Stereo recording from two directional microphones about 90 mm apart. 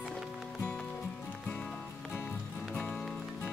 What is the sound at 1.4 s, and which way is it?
Music, 15° left (ahead or behind).